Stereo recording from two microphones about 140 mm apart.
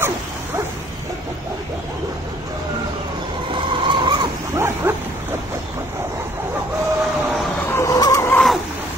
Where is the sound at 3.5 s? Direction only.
35° right (ahead or behind).